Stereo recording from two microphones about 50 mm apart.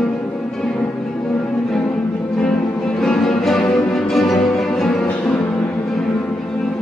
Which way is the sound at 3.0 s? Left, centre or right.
Centre.